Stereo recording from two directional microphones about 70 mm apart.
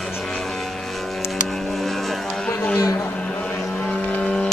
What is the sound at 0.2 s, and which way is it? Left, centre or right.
Vehicle, centre.